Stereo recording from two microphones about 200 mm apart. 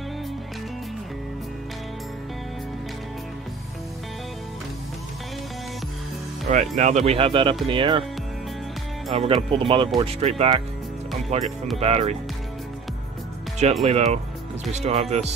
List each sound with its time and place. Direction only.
6.5 s speech: 40° right (ahead or behind)
9.1 s speech: 30° right (ahead or behind)
13.8 s speech: 35° right (ahead or behind)